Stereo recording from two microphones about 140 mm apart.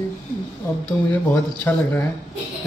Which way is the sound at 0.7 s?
20° left (ahead or behind).